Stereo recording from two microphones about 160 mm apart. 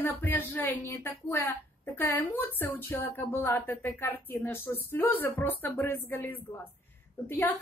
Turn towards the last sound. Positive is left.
turn(degrees=15)  # may be behind; listen again after turning